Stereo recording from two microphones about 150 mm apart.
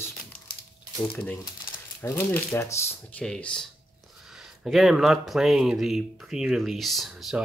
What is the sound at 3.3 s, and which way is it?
Speech, 5° left (ahead or behind).